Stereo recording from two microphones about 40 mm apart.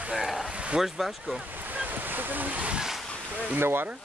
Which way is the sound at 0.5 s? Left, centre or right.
Right.